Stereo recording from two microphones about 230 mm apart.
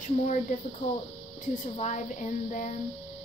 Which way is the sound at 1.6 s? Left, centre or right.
Left.